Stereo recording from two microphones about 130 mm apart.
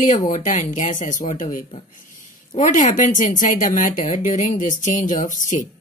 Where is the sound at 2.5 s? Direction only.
75° left (ahead or behind).